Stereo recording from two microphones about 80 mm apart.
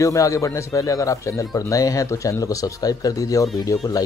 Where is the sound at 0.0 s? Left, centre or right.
Left.